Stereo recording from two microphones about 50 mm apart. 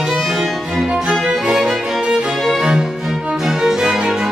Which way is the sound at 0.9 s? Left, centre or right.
Centre.